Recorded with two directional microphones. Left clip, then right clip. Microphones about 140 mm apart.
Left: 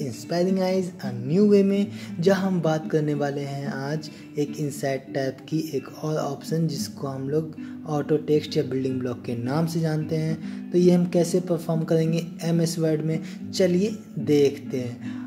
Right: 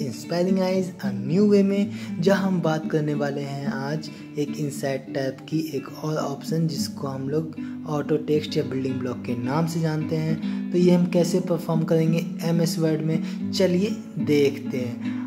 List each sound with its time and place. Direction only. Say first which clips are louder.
0.0 s speech: even; 20° left (ahead or behind)